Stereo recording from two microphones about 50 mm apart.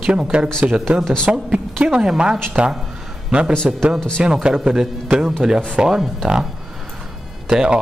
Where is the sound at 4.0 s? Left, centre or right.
Centre.